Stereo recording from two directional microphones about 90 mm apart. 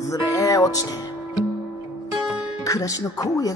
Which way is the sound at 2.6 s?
40° left (ahead or behind).